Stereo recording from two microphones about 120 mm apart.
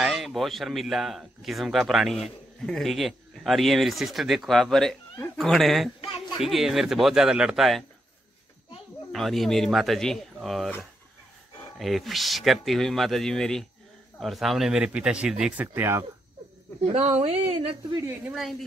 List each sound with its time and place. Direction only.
0.0 s speech: centre (ahead or behind)
5.9 s a sound: 55° left (ahead or behind)
6.3 s speech: 5° right (ahead or behind)
9.1 s speech: centre (ahead or behind)
11.8 s speech: centre (ahead or behind); by 16.1 s 20° right (ahead or behind)
16.8 s a woman's voice: 60° right (ahead or behind)
17.6 s speech: 45° right (ahead or behind)
18.3 s speech: centre (ahead or behind)